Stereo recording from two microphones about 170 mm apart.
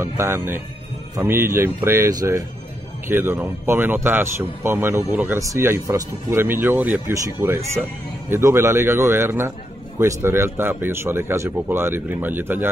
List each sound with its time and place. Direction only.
0.0 s a man's voice: 15° right (ahead or behind)